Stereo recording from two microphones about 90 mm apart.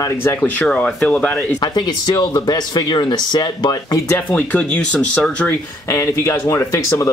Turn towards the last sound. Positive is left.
turn(degrees=35)  # may be behind; listen again after turning